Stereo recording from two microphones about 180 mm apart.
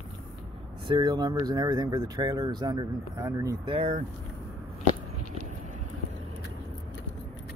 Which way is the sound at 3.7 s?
35° right (ahead or behind).